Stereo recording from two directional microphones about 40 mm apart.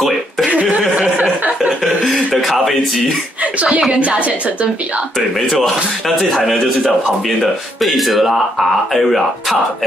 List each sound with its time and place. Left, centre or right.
0.7 s a sound: right
1.4 s chuckle: right
2.0 s speech: centre
3.5 s a woman's voice: right
6.0 s speech: centre
7.8 s speech: centre